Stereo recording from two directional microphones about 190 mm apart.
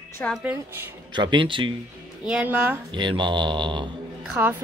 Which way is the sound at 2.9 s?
25° right (ahead or behind).